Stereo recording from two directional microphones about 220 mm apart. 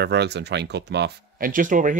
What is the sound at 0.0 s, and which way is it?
Speech, 50° right (ahead or behind).